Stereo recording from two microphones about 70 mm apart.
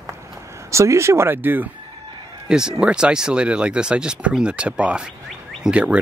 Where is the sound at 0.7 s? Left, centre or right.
Right.